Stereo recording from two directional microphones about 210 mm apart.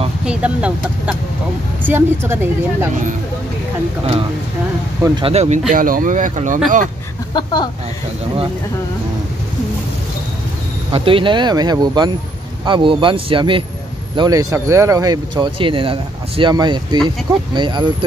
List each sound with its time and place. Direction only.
0.2 s speech: 5° right (ahead or behind)
5.2 s speech: 30° right (ahead or behind)
7.3 s speech: 20° left (ahead or behind)
10.9 s speech: 25° right (ahead or behind)